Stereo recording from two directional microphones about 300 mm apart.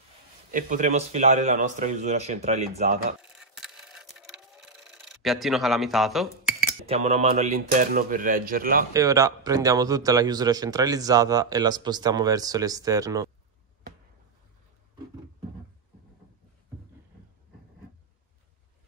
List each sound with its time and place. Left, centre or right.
0.5 s a man's voice: right
3.2 s a sound: centre
6.9 s a man's voice: right
8.9 s speech: centre